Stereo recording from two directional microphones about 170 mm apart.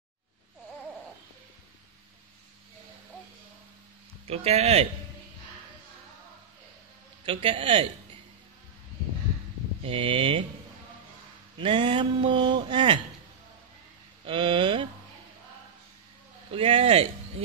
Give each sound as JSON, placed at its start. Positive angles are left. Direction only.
{"t": 4.3, "sound": "a man's voice", "side_deg": -35}
{"t": 7.2, "sound": "a man's voice", "side_deg": -30}
{"t": 9.8, "sound": "a man's voice", "side_deg": -30}
{"t": 11.5, "sound": "speech", "side_deg": -30}
{"t": 14.2, "sound": "speech", "side_deg": -30}
{"t": 16.5, "sound": "a man's voice", "side_deg": -35}